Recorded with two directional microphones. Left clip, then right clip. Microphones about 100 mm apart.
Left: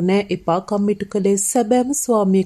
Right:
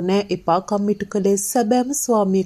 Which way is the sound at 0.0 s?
15° left (ahead or behind).